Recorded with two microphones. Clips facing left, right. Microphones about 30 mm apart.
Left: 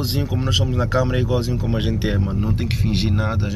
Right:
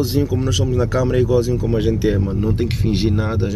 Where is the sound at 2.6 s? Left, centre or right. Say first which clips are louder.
Right 4 dB; centre.